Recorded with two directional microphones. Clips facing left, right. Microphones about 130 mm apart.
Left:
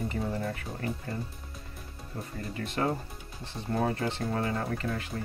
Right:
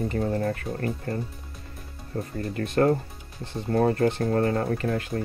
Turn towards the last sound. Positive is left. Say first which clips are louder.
# right 7 dB
turn(degrees=-50)  # may be behind; listen again after turning